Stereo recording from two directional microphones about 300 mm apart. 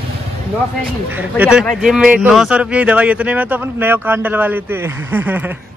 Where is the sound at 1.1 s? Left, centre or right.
Centre.